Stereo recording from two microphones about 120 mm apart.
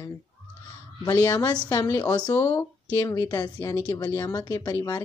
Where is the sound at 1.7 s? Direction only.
25° left (ahead or behind).